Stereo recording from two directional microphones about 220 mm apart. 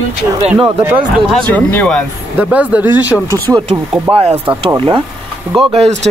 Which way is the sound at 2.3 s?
5° right (ahead or behind).